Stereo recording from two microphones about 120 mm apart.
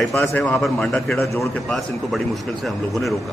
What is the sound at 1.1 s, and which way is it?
Speech, 25° left (ahead or behind).